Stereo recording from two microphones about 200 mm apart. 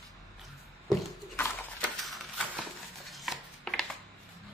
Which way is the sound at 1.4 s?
10° left (ahead or behind).